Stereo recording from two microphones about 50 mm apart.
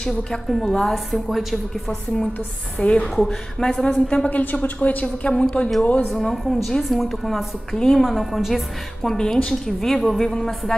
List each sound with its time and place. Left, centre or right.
0.5 s a woman's voice: centre
2.8 s a woman's voice: left
3.2 s a woman's voice: centre; by 5.3 s left
5.3 s a woman's voice: centre
6.0 s a woman's voice: centre
9.1 s a woman's voice: centre